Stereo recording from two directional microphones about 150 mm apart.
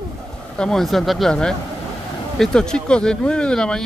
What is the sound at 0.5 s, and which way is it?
A man's voice, 5° left (ahead or behind).